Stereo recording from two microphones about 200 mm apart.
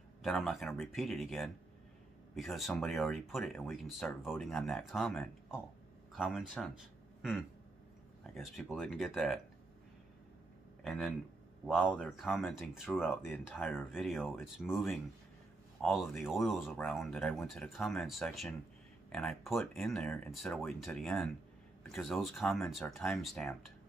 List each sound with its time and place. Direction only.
0.2 s speech: centre (ahead or behind)
7.2 s a sound: centre (ahead or behind)
8.5 s speech: centre (ahead or behind)
10.8 s speech: centre (ahead or behind)